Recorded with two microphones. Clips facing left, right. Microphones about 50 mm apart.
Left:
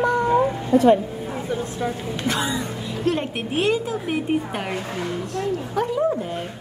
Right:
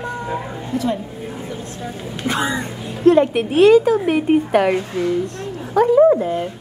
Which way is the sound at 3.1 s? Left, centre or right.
Right.